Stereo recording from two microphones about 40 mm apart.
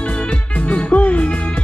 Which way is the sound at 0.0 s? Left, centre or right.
Left.